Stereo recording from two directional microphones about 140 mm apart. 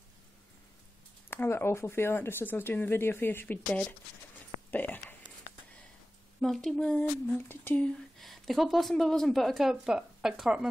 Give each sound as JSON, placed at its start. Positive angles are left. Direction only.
{"t": 1.3, "sound": "speech", "side_deg": 15}
{"t": 4.6, "sound": "a sound", "side_deg": 15}
{"t": 6.4, "sound": "speech", "side_deg": 0}